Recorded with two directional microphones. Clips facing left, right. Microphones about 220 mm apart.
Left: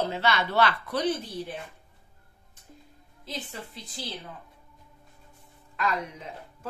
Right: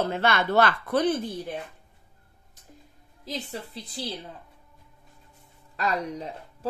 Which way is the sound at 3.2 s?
35° right (ahead or behind).